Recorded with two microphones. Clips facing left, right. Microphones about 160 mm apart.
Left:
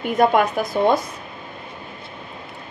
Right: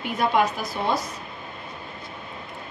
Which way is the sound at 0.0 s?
50° left (ahead or behind).